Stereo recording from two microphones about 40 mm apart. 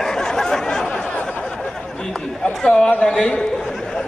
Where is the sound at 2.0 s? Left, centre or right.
Centre.